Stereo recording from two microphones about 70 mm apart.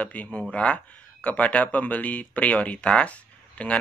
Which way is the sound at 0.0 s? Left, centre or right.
Left.